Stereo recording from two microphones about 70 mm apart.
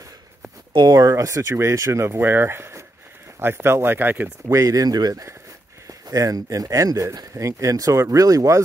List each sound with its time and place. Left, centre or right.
0.7 s speech: right
1.1 s speech: right
4.5 s speech: right